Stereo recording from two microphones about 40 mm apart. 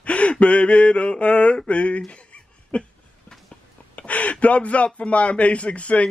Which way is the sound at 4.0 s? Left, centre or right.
Left.